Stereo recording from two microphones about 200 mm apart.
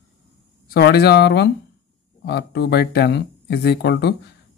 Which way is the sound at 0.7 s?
50° left (ahead or behind).